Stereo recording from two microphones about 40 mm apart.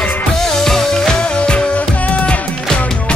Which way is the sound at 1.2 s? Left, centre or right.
Left.